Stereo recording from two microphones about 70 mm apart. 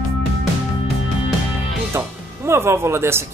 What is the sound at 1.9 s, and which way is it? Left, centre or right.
Music, right.